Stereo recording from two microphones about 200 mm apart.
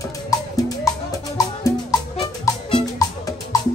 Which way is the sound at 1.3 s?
15° left (ahead or behind).